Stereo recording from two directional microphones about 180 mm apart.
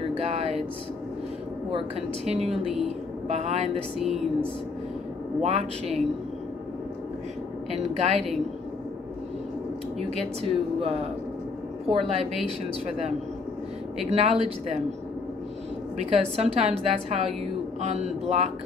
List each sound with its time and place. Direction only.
0.2 s a sound: 35° right (ahead or behind)
2.2 s a woman's voice: 35° right (ahead or behind)
2.5 s a woman's voice: centre (ahead or behind)
3.3 s a woman's voice: 35° right (ahead or behind)
5.4 s a woman's voice: 35° right (ahead or behind)
7.7 s a woman's voice: 40° right (ahead or behind)
10.4 s a woman's voice: 30° right (ahead or behind)
13.9 s a woman's voice: 35° right (ahead or behind)
16.0 s a woman's voice: 35° right (ahead or behind)